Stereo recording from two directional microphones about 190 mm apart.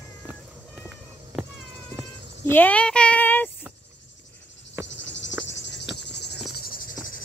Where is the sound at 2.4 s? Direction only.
10° left (ahead or behind).